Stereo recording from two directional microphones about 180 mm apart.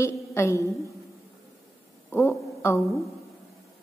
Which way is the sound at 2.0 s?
15° left (ahead or behind).